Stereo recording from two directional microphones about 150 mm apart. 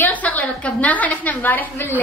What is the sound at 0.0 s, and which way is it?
A woman's voice, 10° left (ahead or behind).